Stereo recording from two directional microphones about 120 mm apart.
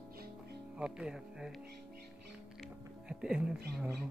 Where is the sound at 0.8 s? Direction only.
5° right (ahead or behind).